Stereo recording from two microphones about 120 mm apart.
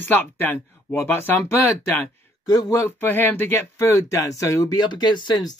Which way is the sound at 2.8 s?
15° left (ahead or behind).